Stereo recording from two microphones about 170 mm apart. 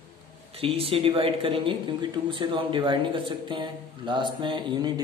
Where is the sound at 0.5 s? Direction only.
35° right (ahead or behind).